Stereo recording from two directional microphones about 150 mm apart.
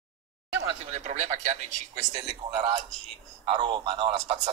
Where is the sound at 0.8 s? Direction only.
50° right (ahead or behind).